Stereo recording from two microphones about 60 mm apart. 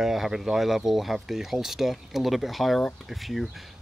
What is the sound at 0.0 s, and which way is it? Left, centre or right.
Speech, centre.